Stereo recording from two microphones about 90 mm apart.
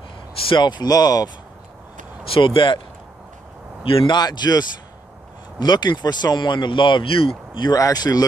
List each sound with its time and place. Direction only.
0.5 s speech: 55° left (ahead or behind)
2.3 s speech: 70° left (ahead or behind)
3.8 s speech: 75° left (ahead or behind)
4.2 s speech: 50° left (ahead or behind); by 7.6 s 85° left
7.6 s speech: 45° left (ahead or behind)